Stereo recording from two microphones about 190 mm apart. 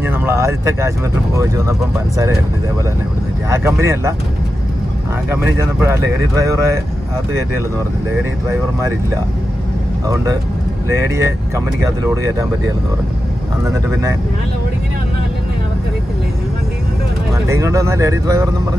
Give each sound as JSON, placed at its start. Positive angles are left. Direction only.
{"t": 0.0, "sound": "speech", "side_deg": -10}
{"t": 3.4, "sound": "speech", "side_deg": -15}
{"t": 5.3, "sound": "speech", "side_deg": -15}
{"t": 10.0, "sound": "speech", "side_deg": -15}
{"t": 13.7, "sound": "speech", "side_deg": -15}
{"t": 17.5, "sound": "speech", "side_deg": -15}